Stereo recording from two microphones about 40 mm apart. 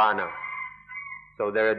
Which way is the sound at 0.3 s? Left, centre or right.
Centre.